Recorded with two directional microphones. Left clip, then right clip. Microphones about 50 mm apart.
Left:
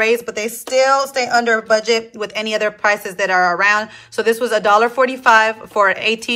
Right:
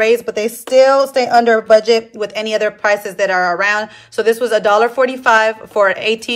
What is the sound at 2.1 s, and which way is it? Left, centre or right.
A woman's voice, right.